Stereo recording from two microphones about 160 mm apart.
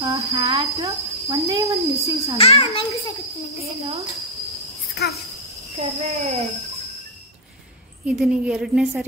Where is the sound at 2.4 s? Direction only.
35° left (ahead or behind).